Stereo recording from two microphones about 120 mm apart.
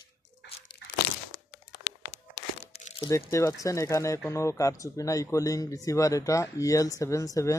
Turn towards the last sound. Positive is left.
turn(degrees=25)  # may be behind; listen again after turning